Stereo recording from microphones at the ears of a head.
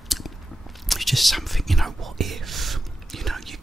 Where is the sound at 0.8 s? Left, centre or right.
Centre.